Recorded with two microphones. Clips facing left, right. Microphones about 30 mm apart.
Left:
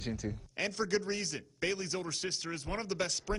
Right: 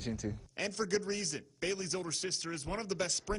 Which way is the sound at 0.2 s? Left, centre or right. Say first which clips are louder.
Left 2 dB; centre.